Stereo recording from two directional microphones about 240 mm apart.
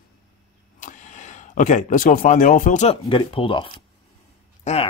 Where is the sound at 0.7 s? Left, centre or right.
Left.